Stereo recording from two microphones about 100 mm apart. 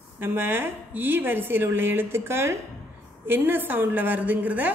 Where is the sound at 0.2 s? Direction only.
25° right (ahead or behind).